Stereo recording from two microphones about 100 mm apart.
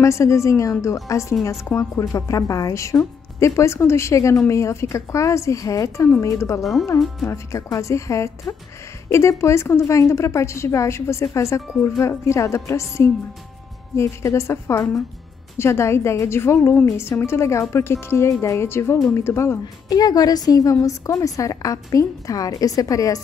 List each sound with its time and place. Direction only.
0.0 s a woman's voice: 30° left (ahead or behind)
6.6 s speech: centre (ahead or behind)
7.2 s a woman's voice: 30° left (ahead or behind)
19.6 s a woman's voice: 40° left (ahead or behind)